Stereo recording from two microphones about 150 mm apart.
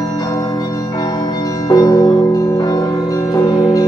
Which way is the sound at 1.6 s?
25° left (ahead or behind).